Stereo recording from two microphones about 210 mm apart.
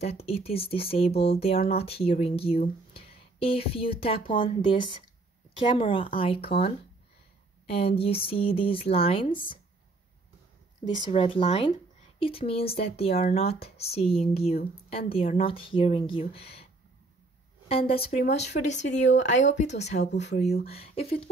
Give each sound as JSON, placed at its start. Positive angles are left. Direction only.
{"t": 0.0, "sound": "speech", "side_deg": 30}
{"t": 11.1, "sound": "speech", "side_deg": 25}
{"t": 17.6, "sound": "speech", "side_deg": 25}
{"t": 20.1, "sound": "speech", "side_deg": 55}
{"t": 20.6, "sound": "speech", "side_deg": 30}